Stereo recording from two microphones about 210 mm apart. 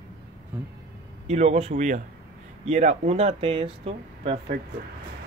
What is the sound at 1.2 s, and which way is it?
Speech, 30° right (ahead or behind).